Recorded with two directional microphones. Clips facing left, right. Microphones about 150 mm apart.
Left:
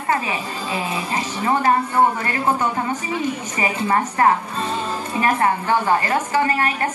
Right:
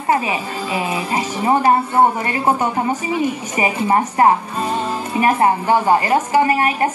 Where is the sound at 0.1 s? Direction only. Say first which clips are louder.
Right 4 dB; 15° right (ahead or behind).